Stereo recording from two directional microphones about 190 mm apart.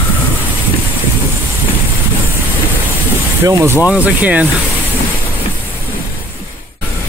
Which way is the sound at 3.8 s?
15° left (ahead or behind).